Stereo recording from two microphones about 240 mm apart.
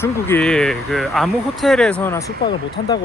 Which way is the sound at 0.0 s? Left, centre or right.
Centre.